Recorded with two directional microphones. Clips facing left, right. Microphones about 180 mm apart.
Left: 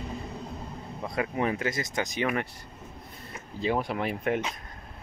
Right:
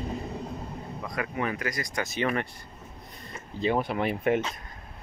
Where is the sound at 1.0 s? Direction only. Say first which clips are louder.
Left 3 dB; 25° left (ahead or behind); by 4.4 s centre (ahead or behind).